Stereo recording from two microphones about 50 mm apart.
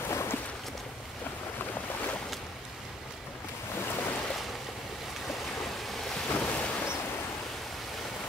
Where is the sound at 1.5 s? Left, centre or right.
Left.